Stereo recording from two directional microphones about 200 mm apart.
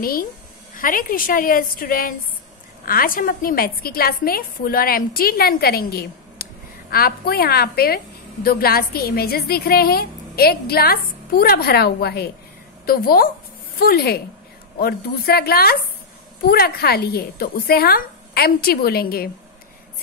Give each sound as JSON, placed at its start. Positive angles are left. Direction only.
{"t": 0.0, "sound": "a woman's voice", "side_deg": 45}